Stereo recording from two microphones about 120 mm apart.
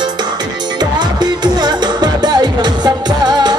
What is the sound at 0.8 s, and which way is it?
Music, 35° right (ahead or behind).